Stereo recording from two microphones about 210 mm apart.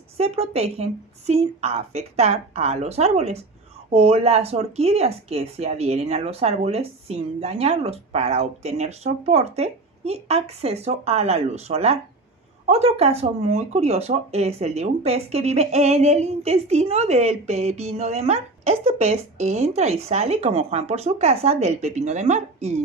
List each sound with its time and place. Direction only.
0.2 s speech: 30° right (ahead or behind)